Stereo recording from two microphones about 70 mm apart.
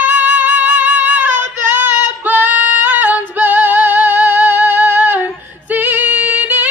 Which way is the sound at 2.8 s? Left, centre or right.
Right.